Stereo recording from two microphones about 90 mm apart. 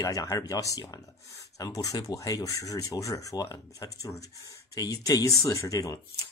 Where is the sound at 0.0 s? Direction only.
40° left (ahead or behind).